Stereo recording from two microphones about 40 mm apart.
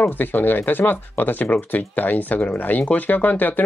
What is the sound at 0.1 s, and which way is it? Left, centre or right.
Speech, left.